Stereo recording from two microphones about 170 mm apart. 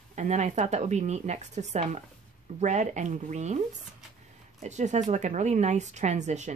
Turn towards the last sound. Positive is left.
turn(degrees=-45)  # may be behind; listen again after turning